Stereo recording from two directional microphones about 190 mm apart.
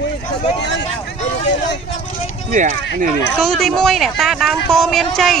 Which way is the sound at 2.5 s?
40° right (ahead or behind).